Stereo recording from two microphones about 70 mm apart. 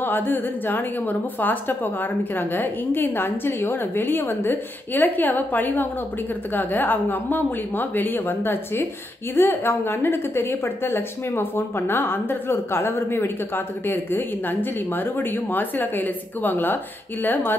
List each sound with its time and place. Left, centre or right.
0.0 s a woman's voice: left